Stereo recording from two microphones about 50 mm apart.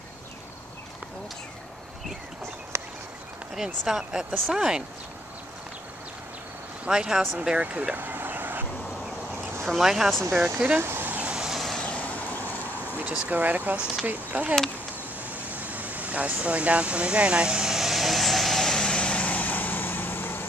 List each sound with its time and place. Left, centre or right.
2.7 s a sound: right
3.5 s speech: centre
6.9 s speech: centre
7.4 s speech: right
8.0 s vehicle: right
8.8 s a sound: centre
9.7 s speech: centre
10.3 s speech: centre
10.8 s speech: right
11.1 s vehicle: right
11.5 s vehicle: centre
13.3 s speech: right
15.2 s air conditioning: right; by 20.4 s left